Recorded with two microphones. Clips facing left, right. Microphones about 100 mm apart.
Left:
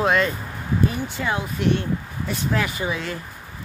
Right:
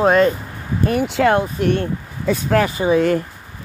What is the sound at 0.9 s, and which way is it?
Speech, 85° right.